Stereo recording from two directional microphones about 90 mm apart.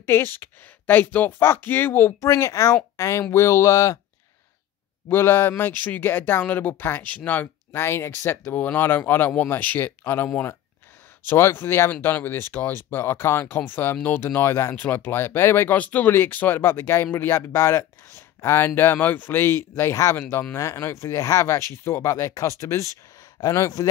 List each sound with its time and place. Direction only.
0.0 s speech: 25° left (ahead or behind)
5.1 s speech: 25° left (ahead or behind)